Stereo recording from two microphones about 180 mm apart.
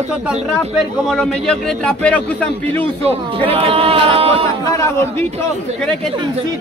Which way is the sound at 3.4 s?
30° right (ahead or behind).